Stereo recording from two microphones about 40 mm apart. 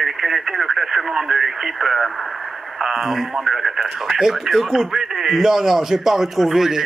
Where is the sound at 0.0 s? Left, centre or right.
Centre.